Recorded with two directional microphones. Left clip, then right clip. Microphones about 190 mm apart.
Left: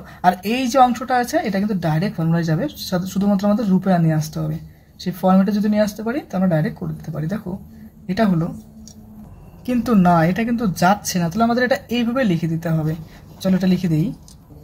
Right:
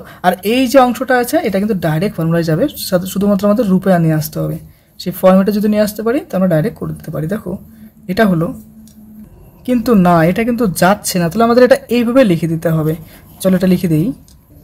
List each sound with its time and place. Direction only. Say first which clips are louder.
0.0 s speech: right 3 dB; 45° right (ahead or behind)
9.7 s speech: right 5 dB; 40° right (ahead or behind)